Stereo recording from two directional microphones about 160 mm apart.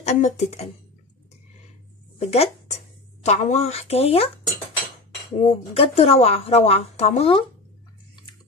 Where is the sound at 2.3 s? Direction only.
40° left (ahead or behind).